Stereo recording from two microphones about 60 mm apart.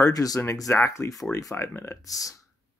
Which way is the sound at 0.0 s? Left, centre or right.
Left.